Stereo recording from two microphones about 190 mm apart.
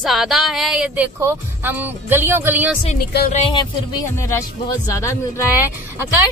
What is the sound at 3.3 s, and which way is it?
Speech, 25° left (ahead or behind).